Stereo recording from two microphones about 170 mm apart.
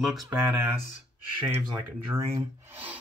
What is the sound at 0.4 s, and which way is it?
Speech, 15° right (ahead or behind).